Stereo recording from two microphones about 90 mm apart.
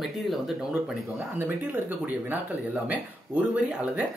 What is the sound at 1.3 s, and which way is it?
Speech, 20° right (ahead or behind).